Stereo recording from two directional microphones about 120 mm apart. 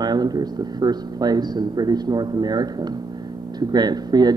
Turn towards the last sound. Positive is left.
turn(degrees=-35)  # may be behind; listen again after turning